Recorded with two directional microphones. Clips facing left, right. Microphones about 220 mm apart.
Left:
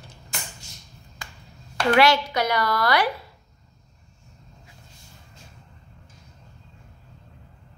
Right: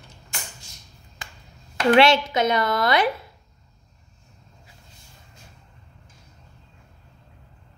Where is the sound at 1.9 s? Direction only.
25° right (ahead or behind).